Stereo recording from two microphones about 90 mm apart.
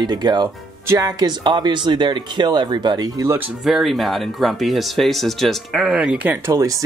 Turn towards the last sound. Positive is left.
turn(degrees=-35)  # may be behind; listen again after turning